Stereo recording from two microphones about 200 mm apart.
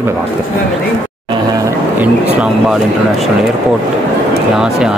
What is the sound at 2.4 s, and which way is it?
Speech, 5° right (ahead or behind).